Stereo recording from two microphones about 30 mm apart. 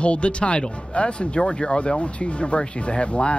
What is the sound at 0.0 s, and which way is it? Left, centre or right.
Speech, left.